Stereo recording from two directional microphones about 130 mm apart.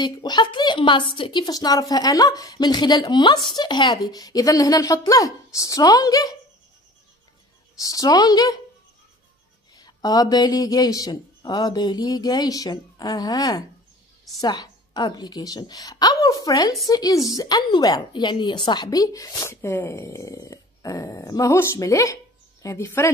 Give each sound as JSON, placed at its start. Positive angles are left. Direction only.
{"t": 0.0, "sound": "a woman's voice", "side_deg": 35}
{"t": 7.8, "sound": "a woman's voice", "side_deg": 25}
{"t": 9.8, "sound": "a woman's voice", "side_deg": 30}